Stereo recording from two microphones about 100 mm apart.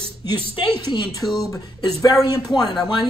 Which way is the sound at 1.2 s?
Centre (ahead or behind).